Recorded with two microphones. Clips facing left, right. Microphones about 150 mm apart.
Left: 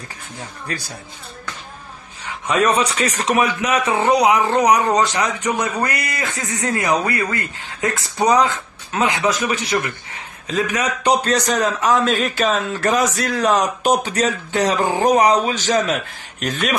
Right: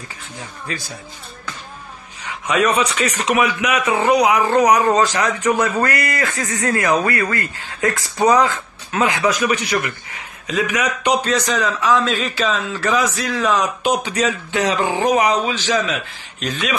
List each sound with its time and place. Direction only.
2.2 s speech: 35° left (ahead or behind)
10.4 s a man's voice: 35° left (ahead or behind); by 12.0 s 50° left (ahead or behind)
12.0 s speech: centre (ahead or behind)
12.4 s a man's voice: 50° left (ahead or behind)